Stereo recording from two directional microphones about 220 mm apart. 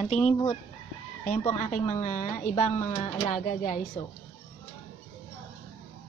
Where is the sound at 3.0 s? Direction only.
20° left (ahead or behind).